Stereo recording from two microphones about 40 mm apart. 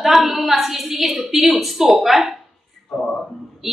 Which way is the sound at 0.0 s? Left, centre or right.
Centre.